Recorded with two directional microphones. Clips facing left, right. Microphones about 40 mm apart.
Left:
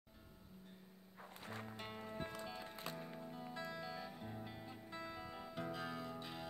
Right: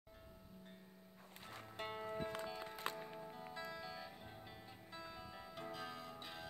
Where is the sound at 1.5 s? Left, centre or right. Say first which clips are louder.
Left 5 dB; centre.